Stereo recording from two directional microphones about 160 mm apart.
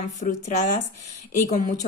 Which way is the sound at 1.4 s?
55° left (ahead or behind).